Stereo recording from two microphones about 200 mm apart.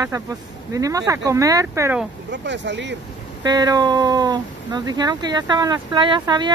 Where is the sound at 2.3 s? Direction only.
60° right (ahead or behind).